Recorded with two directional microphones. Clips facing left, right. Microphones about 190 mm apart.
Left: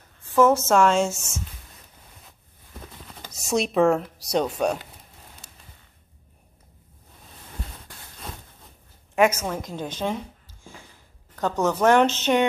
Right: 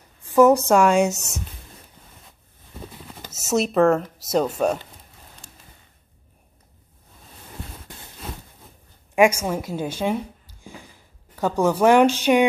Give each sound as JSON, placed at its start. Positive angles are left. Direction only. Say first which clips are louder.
{"t": 0.2, "sound": "speech", "louder": "right 4 dB", "side_deg": -15}
{"t": 2.8, "sound": "a sound", "louder": "right 4 dB", "side_deg": -5}
{"t": 4.3, "sound": "speech", "louder": "right 2 dB", "side_deg": -5}
{"t": 9.1, "sound": "speech", "louder": "right 3 dB", "side_deg": -10}